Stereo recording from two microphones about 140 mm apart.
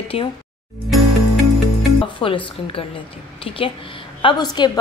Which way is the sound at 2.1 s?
40° left (ahead or behind).